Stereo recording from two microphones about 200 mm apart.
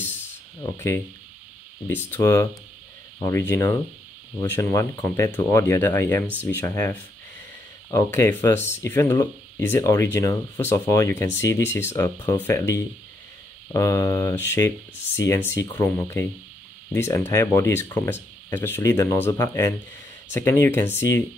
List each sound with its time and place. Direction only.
0.0 s spray: 10° left (ahead or behind)
1.9 s speech: 10° left (ahead or behind)